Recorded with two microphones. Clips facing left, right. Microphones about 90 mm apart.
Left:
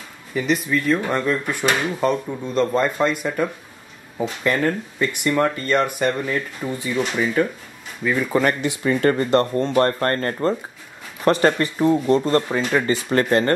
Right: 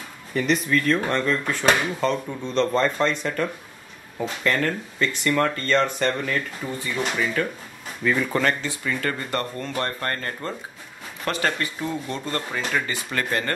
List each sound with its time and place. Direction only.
0.3 s speech: 5° left (ahead or behind); by 7.5 s 20° left (ahead or behind)
8.0 s speech: 5° left (ahead or behind)
8.8 s speech: 30° left (ahead or behind)